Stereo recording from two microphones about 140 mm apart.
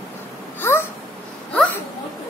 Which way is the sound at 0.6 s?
15° left (ahead or behind).